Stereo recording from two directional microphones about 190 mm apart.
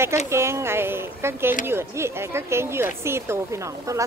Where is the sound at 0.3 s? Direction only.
15° right (ahead or behind).